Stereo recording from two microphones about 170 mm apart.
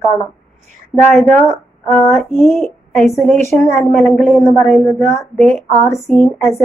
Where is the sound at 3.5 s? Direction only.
15° left (ahead or behind).